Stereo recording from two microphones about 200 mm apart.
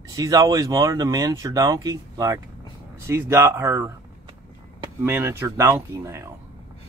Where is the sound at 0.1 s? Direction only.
15° right (ahead or behind).